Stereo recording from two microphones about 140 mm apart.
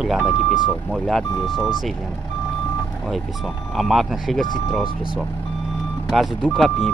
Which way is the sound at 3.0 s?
Centre (ahead or behind).